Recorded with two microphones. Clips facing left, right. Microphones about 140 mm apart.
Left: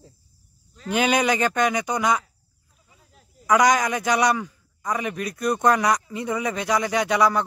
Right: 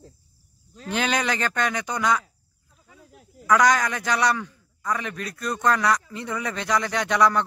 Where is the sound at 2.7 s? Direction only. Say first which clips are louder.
Right 7 dB; 75° right (ahead or behind).